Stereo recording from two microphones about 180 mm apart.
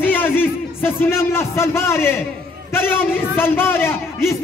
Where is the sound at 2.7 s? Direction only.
10° left (ahead or behind).